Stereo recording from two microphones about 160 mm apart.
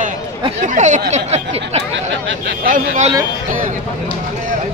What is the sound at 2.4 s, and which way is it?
Speech, 65° right (ahead or behind).